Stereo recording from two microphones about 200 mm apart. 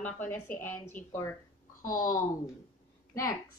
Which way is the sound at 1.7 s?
45° left (ahead or behind).